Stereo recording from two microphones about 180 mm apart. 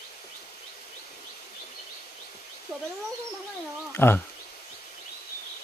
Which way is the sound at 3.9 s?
10° left (ahead or behind).